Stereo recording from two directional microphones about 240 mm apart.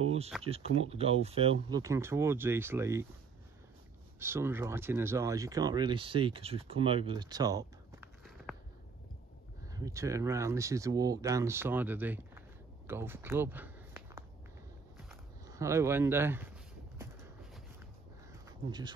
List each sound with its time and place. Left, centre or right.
0.0 s a sound: right
0.4 s speech: right
4.2 s speech: centre
8.5 s a sound: centre
9.7 s speech: centre
15.4 s speech: centre